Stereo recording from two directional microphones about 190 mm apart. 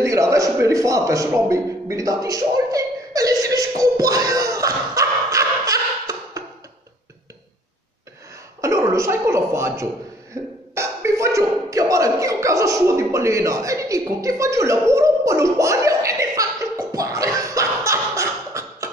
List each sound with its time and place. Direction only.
0.0 s a sound: 15° right (ahead or behind)
8.5 s speech: 15° right (ahead or behind)
10.3 s beatboxing: 15° right (ahead or behind)